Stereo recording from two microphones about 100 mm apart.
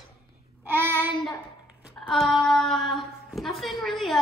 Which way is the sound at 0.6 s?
20° right (ahead or behind).